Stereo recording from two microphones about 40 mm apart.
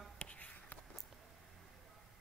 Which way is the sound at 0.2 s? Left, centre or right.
Left.